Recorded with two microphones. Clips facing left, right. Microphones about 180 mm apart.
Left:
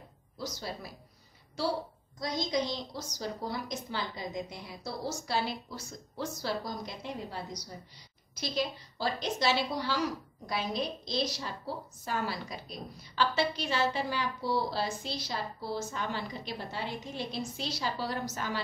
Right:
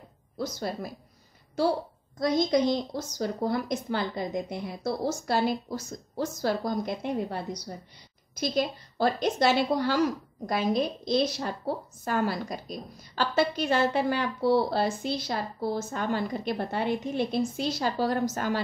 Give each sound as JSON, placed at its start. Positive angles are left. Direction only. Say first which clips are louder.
{"t": 2.1, "sound": "a woman's voice", "louder": "right 8 dB", "side_deg": -55}
{"t": 8.4, "sound": "a woman's voice", "louder": "right 6 dB", "side_deg": -45}